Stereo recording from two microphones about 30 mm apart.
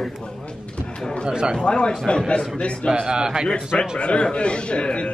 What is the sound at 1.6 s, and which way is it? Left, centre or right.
A man's voice, left.